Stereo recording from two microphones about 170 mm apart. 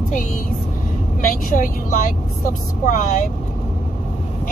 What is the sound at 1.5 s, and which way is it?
Speech, 55° left (ahead or behind).